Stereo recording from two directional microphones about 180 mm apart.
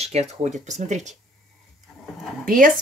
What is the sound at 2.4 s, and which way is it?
Speech, 50° right (ahead or behind).